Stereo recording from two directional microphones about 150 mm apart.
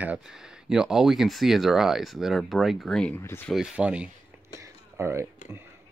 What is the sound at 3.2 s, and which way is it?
Speech, 15° left (ahead or behind).